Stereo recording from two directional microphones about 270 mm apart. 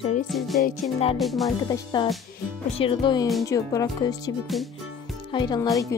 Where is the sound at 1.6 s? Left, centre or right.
Centre.